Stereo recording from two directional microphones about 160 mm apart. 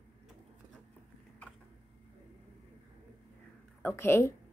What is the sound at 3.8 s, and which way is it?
Speech, 15° left (ahead or behind).